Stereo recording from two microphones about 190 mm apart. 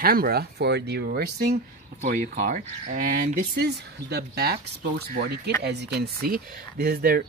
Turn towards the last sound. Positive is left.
turn(degrees=-50)  # may be behind; listen again after turning